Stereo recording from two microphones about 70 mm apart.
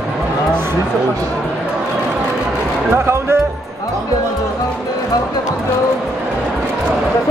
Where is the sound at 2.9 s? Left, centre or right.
Right.